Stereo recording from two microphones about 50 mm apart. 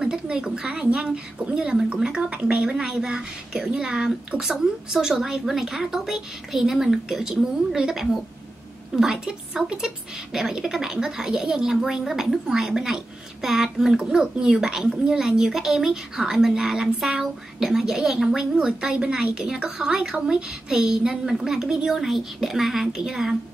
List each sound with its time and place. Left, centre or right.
0.0 s a woman's voice: centre